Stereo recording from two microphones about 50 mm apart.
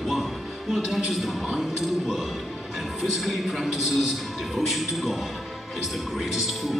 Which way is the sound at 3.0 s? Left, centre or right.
Centre.